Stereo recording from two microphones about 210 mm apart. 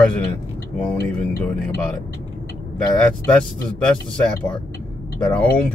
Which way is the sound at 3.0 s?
5° left (ahead or behind).